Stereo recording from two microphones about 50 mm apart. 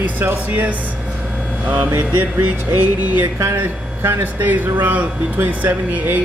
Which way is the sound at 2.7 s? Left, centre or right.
Right.